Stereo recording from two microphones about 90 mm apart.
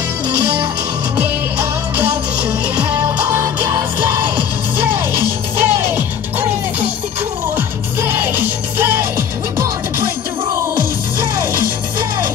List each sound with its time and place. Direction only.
1.1 s music: 20° right (ahead or behind)